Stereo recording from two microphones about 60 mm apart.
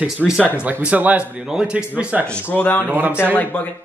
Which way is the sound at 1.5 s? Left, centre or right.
Centre.